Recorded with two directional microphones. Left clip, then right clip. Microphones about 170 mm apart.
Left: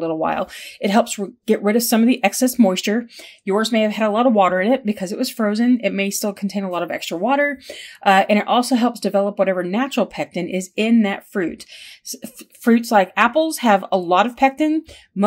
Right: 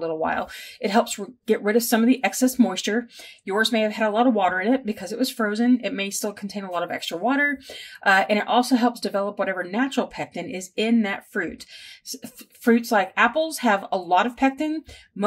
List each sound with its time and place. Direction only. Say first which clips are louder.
0.0 s speech: left 4 dB; 60° left (ahead or behind)
12.6 s speech: left 4 dB; 60° left (ahead or behind)